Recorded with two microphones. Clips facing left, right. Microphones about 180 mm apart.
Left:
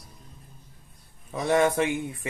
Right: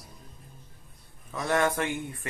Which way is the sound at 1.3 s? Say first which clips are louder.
Left 4 dB; 20° left (ahead or behind).